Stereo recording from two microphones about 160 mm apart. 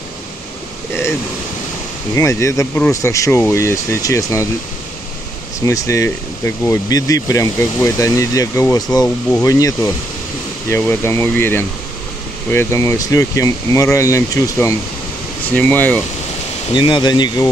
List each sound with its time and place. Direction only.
2.1 s speech: 20° left (ahead or behind)
5.7 s speech: 20° left (ahead or behind)
15.5 s speech: 10° left (ahead or behind)
16.7 s speech: 30° left (ahead or behind)